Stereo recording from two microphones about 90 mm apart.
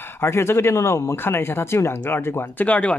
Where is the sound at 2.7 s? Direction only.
15° left (ahead or behind).